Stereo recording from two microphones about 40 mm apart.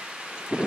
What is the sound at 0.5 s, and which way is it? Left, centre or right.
Wind, right.